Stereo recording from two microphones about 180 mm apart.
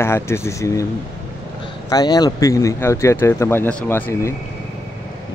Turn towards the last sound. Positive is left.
turn(degrees=10)  # may be behind; listen again after turning